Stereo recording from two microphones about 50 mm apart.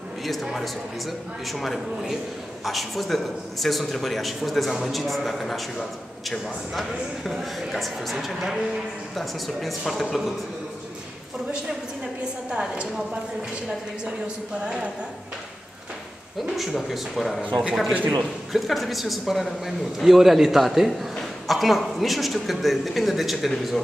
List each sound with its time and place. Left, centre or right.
0.2 s a woman's voice: centre
12.4 s a woman's voice: centre
14.0 s a sound: centre
16.5 s speech: centre
17.5 s a sound: right
18.5 s speech: centre